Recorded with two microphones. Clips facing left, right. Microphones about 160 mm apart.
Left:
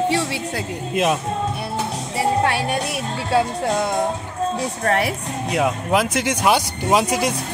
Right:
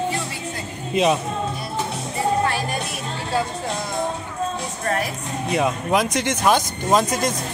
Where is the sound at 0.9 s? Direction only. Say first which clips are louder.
Right 1 dB; centre (ahead or behind).